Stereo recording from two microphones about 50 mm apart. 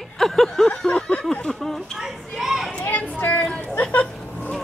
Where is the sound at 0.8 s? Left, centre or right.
Centre.